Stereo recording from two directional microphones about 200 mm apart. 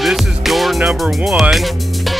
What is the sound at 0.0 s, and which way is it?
Speech, centre (ahead or behind).